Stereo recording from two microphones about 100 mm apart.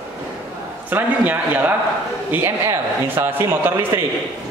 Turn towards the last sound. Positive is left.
turn(degrees=-20)  # may be behind; listen again after turning